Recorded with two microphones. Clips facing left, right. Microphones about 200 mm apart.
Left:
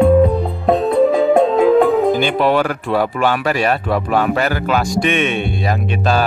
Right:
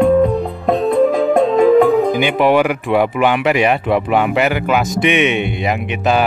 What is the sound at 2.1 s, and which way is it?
Speech, 15° right (ahead or behind).